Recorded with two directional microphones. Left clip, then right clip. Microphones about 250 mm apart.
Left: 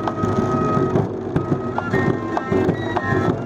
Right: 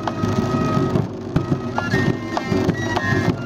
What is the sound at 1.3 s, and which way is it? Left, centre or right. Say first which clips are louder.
Music: right 2 dB; right.